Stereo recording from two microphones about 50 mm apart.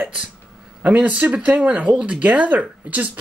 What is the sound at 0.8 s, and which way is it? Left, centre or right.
Speech, right.